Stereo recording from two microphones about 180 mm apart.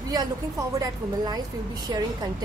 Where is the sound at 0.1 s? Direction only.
20° right (ahead or behind).